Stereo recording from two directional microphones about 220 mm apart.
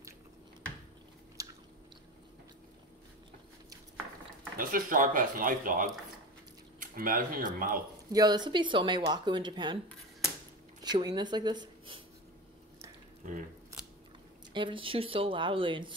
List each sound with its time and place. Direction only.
1.4 s chewing: 15° right (ahead or behind)
4.6 s speech: 40° right (ahead or behind)
8.1 s speech: 20° right (ahead or behind)
10.8 s speech: 20° right (ahead or behind)
13.2 s speech: 35° right (ahead or behind)
14.5 s speech: 20° right (ahead or behind)